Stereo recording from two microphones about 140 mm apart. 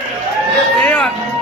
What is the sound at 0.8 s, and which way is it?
Music, 5° left (ahead or behind).